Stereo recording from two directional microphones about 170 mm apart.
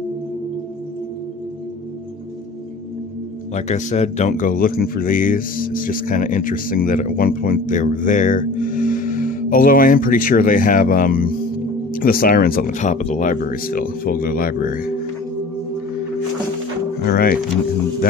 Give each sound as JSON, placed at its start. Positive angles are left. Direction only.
{"t": 3.5, "sound": "speech", "side_deg": 40}
{"t": 17.0, "sound": "speech", "side_deg": 60}